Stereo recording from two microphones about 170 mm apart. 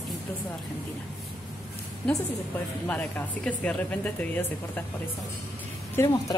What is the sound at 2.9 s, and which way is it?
Speech, 10° left (ahead or behind).